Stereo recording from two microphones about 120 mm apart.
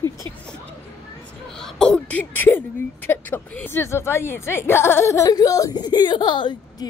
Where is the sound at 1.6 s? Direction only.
5° left (ahead or behind).